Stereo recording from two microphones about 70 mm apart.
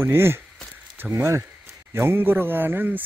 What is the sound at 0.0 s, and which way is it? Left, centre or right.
A man's voice, right.